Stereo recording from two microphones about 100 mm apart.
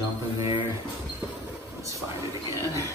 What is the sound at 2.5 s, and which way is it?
Speech, 30° right (ahead or behind).